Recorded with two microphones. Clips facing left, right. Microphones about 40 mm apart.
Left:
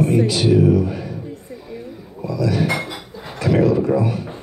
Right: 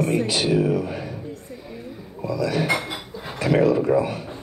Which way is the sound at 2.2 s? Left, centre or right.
Right.